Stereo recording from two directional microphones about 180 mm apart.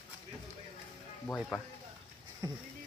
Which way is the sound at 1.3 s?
10° left (ahead or behind).